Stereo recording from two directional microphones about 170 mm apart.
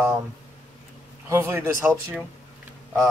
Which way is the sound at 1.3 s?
15° right (ahead or behind).